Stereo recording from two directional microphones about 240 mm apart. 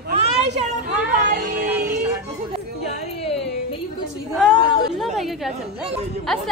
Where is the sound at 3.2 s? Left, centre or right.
Left.